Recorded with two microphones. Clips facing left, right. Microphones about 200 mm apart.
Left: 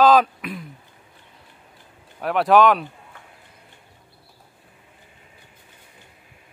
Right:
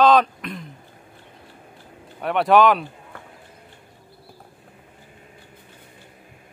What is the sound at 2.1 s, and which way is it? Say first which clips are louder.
Speech: even; centre (ahead or behind).